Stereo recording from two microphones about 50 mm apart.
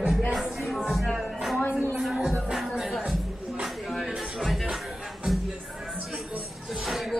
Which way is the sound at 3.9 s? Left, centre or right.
Centre.